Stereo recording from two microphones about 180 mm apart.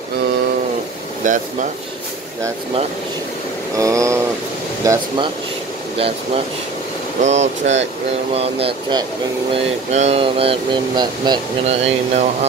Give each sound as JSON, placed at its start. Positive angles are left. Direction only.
{"t": 1.2, "sound": "speech", "side_deg": -45}
{"t": 3.7, "sound": "a sound", "side_deg": -20}
{"t": 4.8, "sound": "speech", "side_deg": -25}